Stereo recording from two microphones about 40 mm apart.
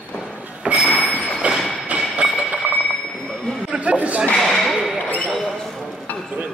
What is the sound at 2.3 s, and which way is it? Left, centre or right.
Alarm clock, right.